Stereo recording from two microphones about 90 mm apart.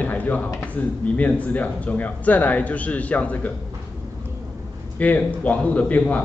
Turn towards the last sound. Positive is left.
turn(degrees=15)  # may be behind; listen again after turning